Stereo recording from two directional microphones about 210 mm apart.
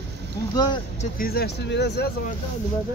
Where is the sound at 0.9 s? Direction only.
40° left (ahead or behind).